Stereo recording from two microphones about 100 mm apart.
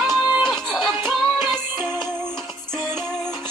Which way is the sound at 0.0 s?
5° left (ahead or behind).